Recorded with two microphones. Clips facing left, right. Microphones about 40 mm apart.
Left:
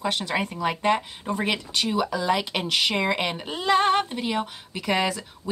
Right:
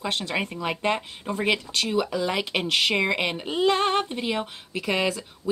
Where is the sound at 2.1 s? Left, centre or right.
Centre.